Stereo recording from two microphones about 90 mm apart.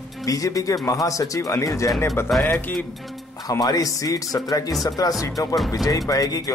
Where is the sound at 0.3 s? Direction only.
40° left (ahead or behind).